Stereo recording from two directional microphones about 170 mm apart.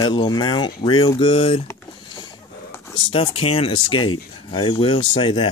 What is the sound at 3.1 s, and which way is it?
Speech, 35° left (ahead or behind).